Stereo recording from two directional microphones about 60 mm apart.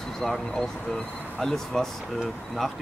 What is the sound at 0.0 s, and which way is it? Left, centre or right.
Speech, centre.